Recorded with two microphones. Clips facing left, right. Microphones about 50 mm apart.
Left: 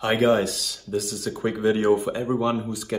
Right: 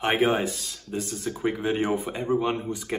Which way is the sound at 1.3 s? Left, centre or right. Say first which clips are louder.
Left 4 dB; centre.